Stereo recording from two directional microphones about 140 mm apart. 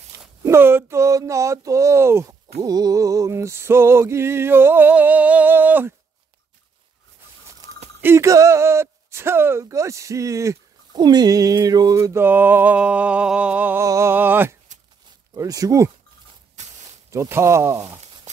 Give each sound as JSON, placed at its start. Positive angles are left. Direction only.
{"t": 0.4, "sound": "speech", "side_deg": -15}
{"t": 2.6, "sound": "music", "side_deg": -25}
{"t": 8.0, "sound": "speech", "side_deg": -20}
{"t": 13.8, "sound": "music", "side_deg": -20}
{"t": 15.3, "sound": "speech", "side_deg": -25}
{"t": 17.1, "sound": "speech", "side_deg": -20}